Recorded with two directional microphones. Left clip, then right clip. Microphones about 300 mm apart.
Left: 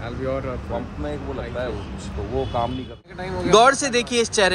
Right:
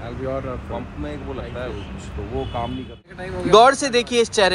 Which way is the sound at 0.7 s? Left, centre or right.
Left.